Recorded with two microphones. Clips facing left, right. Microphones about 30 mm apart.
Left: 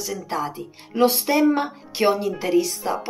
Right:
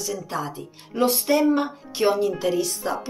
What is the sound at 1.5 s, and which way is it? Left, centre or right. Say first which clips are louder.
A woman's voice: even; centre.